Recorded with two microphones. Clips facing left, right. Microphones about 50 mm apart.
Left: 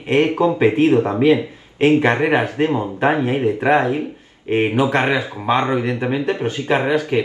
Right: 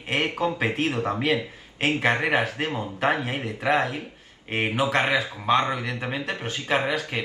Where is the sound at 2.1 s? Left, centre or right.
Left.